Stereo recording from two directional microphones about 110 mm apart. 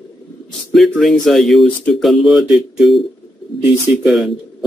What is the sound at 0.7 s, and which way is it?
Speech, centre (ahead or behind).